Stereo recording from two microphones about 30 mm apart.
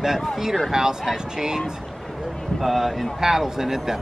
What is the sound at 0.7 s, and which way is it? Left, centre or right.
Speech, centre.